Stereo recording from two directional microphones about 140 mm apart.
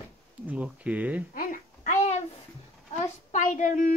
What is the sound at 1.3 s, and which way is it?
Speech, 70° left (ahead or behind).